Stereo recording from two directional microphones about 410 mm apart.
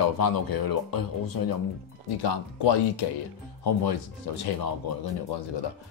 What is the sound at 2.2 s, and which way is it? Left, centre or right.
Speech, left.